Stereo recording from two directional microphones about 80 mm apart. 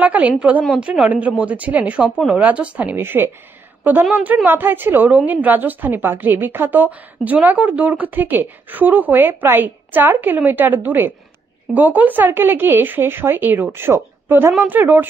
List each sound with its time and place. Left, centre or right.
0.0 s a woman's voice: centre